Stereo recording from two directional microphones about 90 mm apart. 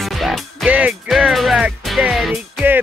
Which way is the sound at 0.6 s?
15° right (ahead or behind).